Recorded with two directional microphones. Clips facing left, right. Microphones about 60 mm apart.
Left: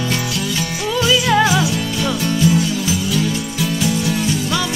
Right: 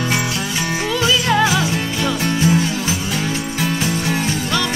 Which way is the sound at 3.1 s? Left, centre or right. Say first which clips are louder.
Left 2 dB; right.